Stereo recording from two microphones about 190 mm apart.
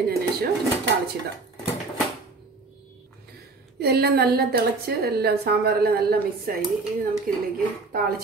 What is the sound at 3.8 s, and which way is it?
A woman's voice, 55° right (ahead or behind).